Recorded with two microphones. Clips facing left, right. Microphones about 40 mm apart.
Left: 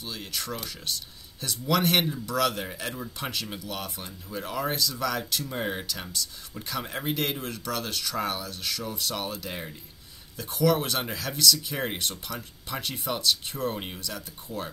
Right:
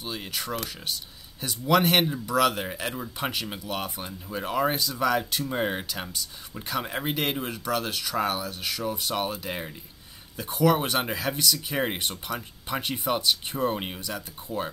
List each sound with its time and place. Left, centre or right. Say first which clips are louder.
0.0 s speech: right 2 dB; centre